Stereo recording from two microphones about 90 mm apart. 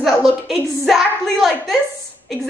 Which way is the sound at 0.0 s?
Centre (ahead or behind).